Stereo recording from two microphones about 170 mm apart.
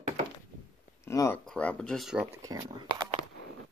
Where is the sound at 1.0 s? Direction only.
15° left (ahead or behind).